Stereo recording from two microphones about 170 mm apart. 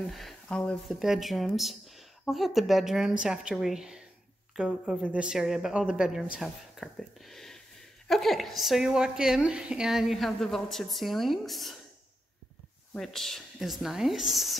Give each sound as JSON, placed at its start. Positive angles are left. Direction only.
{"t": 0.1, "sound": "speech", "side_deg": 0}
{"t": 12.9, "sound": "speech", "side_deg": 0}